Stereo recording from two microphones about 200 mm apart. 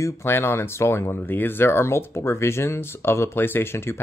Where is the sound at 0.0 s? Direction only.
10° left (ahead or behind).